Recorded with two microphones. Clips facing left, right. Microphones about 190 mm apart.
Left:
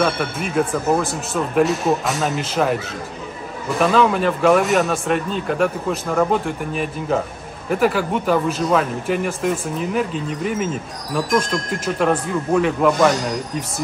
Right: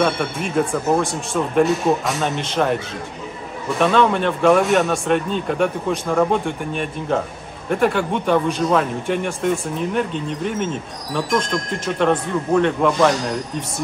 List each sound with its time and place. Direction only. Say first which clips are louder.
0.0 s a man's voice: even; centre (ahead or behind)